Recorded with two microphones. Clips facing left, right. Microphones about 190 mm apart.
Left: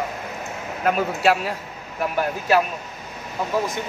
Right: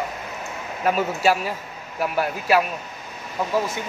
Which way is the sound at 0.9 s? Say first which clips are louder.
Left 1 dB; centre (ahead or behind).